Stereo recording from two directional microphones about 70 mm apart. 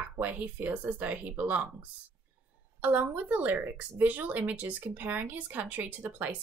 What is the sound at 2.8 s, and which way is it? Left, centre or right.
A woman's voice, right.